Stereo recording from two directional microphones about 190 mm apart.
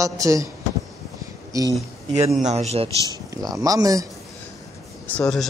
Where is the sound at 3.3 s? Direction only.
20° right (ahead or behind).